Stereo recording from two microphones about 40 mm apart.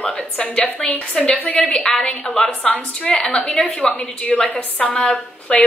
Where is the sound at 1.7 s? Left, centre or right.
Centre.